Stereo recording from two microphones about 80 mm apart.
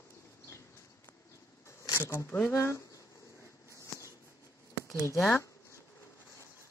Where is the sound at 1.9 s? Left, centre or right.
Left.